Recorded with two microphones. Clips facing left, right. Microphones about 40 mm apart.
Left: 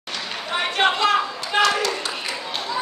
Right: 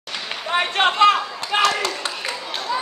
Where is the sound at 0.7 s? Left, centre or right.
Right.